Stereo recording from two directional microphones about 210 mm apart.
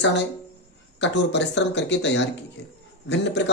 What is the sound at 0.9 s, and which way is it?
Speech, 55° left (ahead or behind).